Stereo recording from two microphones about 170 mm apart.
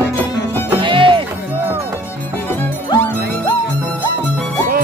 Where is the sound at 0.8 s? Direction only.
30° right (ahead or behind).